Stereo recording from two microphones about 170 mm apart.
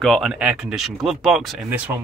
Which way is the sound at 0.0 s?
Centre (ahead or behind).